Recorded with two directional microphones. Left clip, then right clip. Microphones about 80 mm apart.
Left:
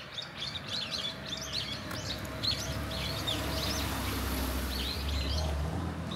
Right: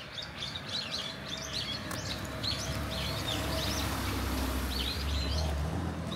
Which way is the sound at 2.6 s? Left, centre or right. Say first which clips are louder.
Right 1 dB; right.